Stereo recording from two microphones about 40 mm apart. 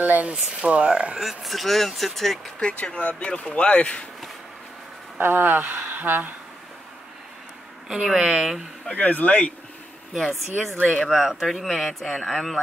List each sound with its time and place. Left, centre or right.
0.0 s speech: right
0.5 s speech: right
1.2 s speech: centre
2.6 s speech: left
5.2 s speech: right
7.9 s speech: centre
8.9 s speech: left
10.1 s speech: centre
11.1 s speech: centre
11.3 s speech: centre